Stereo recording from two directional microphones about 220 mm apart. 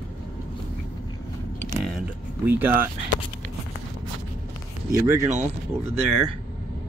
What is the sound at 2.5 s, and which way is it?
Speech, 10° right (ahead or behind).